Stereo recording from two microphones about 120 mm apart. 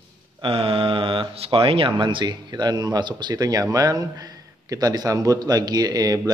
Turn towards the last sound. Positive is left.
turn(degrees=-30)  # may be behind; listen again after turning